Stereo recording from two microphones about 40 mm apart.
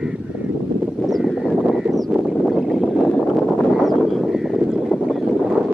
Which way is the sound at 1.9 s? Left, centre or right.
Centre.